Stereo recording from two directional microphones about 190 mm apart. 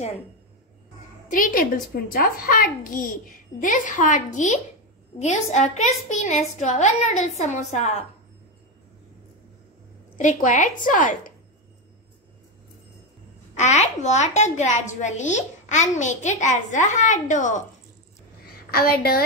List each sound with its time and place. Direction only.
1.3 s a child's voice: 45° left (ahead or behind)
10.1 s a woman's voice: 40° left (ahead or behind)
13.6 s a woman's voice: 40° left (ahead or behind)
18.7 s a child's voice: 50° left (ahead or behind)